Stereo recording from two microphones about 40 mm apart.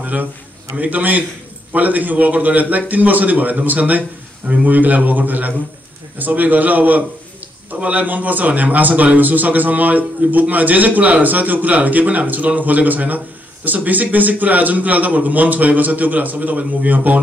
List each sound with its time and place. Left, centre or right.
0.0 s a man's voice: right